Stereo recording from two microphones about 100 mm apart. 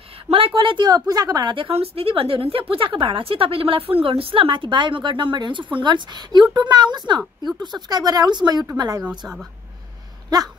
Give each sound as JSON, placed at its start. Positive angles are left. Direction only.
{"t": 0.6, "sound": "speech", "side_deg": -55}
{"t": 0.9, "sound": "speech", "side_deg": -40}
{"t": 1.7, "sound": "a woman's voice", "side_deg": -80}
{"t": 9.2, "sound": "speech", "side_deg": 0}